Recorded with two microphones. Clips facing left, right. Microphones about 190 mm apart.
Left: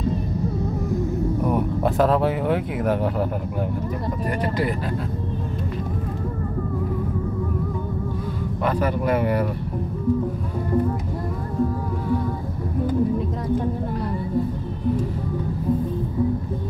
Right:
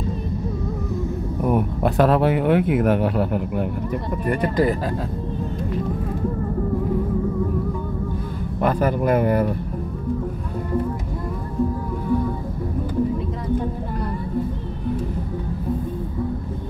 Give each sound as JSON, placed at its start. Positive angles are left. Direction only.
{"t": 1.8, "sound": "speech", "side_deg": -70}
{"t": 8.6, "sound": "speech", "side_deg": -45}